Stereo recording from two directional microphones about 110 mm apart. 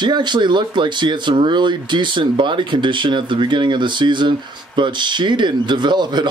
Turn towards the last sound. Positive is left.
turn(degrees=-40)  # may be behind; listen again after turning